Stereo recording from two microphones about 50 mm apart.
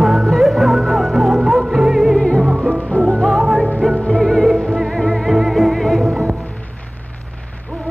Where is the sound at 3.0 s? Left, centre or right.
Centre.